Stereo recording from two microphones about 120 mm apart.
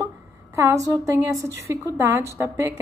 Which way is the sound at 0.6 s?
25° right (ahead or behind).